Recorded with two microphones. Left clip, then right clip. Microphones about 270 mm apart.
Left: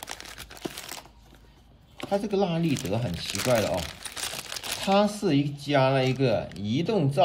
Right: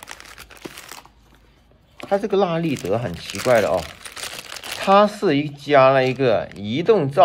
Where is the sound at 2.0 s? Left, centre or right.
Centre.